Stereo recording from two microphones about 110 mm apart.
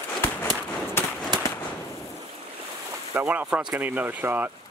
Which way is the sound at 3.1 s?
20° right (ahead or behind).